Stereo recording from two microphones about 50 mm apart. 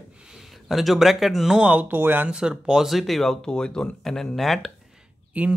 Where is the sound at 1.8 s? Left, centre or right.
Right.